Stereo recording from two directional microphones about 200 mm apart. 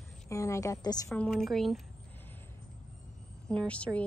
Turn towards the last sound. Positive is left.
turn(degrees=5)  # may be behind; listen again after turning